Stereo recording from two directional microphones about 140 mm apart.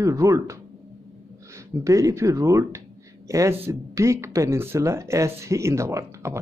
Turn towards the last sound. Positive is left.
turn(degrees=-20)  # may be behind; listen again after turning